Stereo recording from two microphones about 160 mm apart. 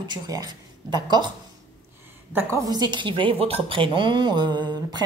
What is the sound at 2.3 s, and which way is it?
A woman's voice, 20° right (ahead or behind).